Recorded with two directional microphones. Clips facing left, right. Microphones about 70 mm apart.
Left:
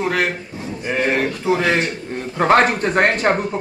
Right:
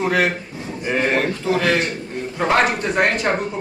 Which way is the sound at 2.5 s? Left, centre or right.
Left.